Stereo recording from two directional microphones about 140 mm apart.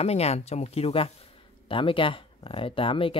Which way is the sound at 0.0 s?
50° left (ahead or behind).